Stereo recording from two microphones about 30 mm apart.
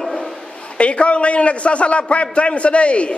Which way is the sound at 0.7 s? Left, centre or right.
Left.